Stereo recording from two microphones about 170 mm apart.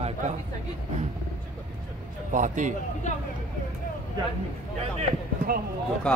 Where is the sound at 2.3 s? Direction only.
50° right (ahead or behind).